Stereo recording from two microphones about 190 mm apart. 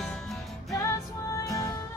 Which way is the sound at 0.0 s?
Centre (ahead or behind).